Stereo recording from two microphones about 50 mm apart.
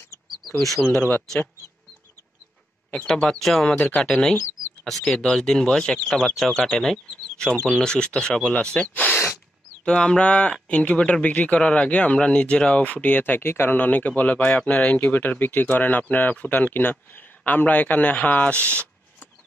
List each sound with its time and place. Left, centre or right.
0.8 s speech: centre
3.1 s speech: centre
3.8 s speech: left
4.1 s speech: centre
6.3 s speech: centre; by 13.2 s left
13.2 s speech: left
13.7 s speech: left